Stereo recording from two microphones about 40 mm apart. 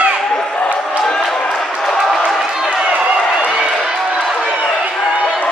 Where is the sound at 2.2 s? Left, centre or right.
Centre.